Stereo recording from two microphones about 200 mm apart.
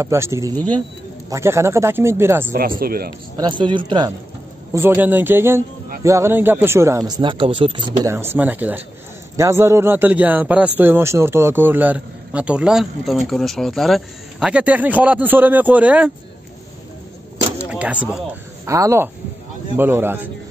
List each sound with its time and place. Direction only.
0.0 s a man's voice: 15° right (ahead or behind)
2.8 s a man's voice: 50° right (ahead or behind)
3.3 s speech: 25° right (ahead or behind)
4.7 s a man's voice: 10° right (ahead or behind)
8.1 s a man's voice: 10° right (ahead or behind)
17.6 s a man's voice: 5° right (ahead or behind)